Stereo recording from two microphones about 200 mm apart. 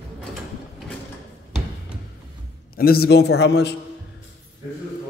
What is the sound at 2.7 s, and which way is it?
A man's voice, 50° left (ahead or behind).